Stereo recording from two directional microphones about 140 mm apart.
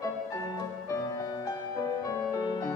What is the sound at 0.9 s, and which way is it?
Music, 25° left (ahead or behind).